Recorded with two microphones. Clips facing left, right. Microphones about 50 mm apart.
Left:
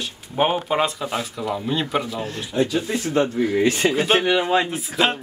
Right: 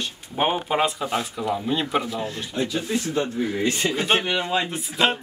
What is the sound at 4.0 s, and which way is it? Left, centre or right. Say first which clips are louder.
Speech: left 3 dB; centre.